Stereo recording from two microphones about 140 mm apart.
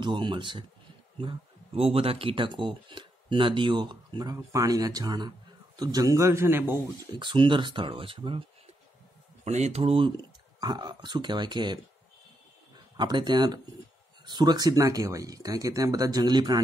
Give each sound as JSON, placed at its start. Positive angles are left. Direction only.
{"t": 0.0, "sound": "speech", "side_deg": -35}
{"t": 7.2, "sound": "speech", "side_deg": -35}
{"t": 9.4, "sound": "speech", "side_deg": -50}
{"t": 12.9, "sound": "speech", "side_deg": -30}